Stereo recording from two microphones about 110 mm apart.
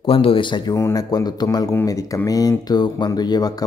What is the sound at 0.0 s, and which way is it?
Speech, 55° left (ahead or behind).